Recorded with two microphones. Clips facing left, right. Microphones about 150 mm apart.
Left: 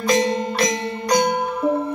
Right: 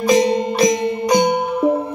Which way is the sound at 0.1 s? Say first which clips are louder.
Right 4 dB; 15° right (ahead or behind).